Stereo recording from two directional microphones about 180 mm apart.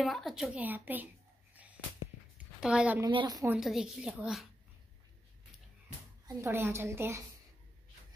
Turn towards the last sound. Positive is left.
turn(degrees=-15)  # may be behind; listen again after turning